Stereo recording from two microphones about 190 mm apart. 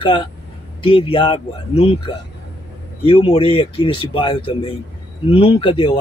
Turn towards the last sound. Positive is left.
turn(degrees=25)  # may be behind; listen again after turning